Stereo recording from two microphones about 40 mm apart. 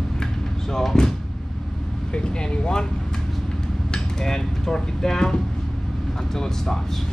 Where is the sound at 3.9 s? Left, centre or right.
Centre.